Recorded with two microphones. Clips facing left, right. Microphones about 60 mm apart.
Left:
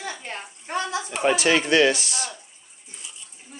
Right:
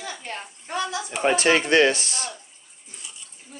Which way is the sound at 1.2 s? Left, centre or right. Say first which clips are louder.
Right 1 dB; right.